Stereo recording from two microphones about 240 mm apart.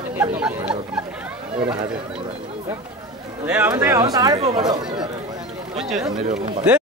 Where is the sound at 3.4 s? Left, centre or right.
Centre; by 5.0 s right.